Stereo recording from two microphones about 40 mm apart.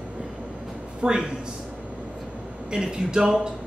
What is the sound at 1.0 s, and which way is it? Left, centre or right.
Speech, right.